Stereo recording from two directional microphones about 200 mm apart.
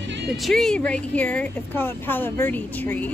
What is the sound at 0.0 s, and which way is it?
Music, 65° right (ahead or behind).